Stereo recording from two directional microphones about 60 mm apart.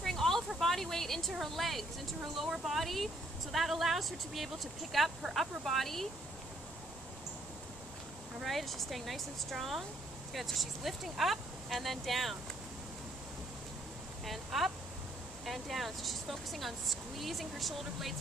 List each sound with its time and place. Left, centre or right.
0.0 s a sound: centre
1.4 s speech: centre
8.4 s speech: centre
14.2 s speech: centre